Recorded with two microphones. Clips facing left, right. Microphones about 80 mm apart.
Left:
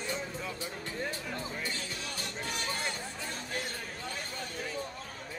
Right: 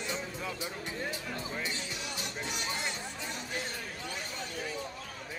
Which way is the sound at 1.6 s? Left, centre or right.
Centre.